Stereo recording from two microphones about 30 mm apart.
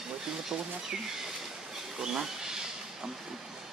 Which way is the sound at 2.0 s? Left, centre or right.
Right.